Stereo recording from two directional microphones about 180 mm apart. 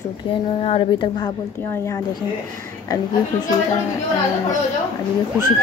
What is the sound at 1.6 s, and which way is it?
Speech, 15° left (ahead or behind).